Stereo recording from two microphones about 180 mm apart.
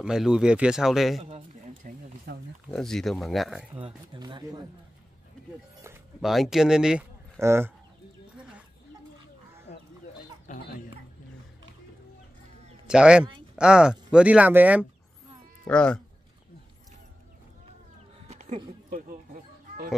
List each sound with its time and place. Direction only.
0.0 s speech: 5° right (ahead or behind)
1.2 s a sound: 35° right (ahead or behind)
2.3 s speech: 60° right (ahead or behind)
2.7 s speech: centre (ahead or behind)
3.7 s speech: 25° right (ahead or behind)
6.2 s speech: centre (ahead or behind)
7.3 s speech: 15° right (ahead or behind)
10.5 s speech: 45° left (ahead or behind)
12.8 s speech: 5° right (ahead or behind)
15.6 s speech: 5° left (ahead or behind)
18.3 s a sound: 40° right (ahead or behind)